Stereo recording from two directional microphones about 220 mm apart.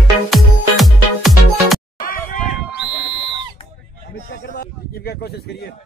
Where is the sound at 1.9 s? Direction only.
40° left (ahead or behind).